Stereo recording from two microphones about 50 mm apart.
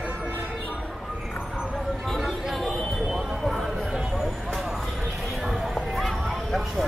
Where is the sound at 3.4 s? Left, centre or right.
Centre.